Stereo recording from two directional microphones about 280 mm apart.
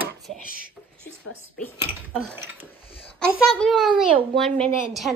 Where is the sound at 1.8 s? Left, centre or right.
Centre.